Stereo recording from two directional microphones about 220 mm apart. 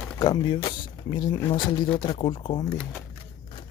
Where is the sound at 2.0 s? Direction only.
20° left (ahead or behind).